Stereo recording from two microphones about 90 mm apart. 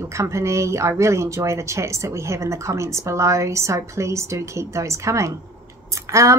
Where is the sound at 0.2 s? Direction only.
35° right (ahead or behind).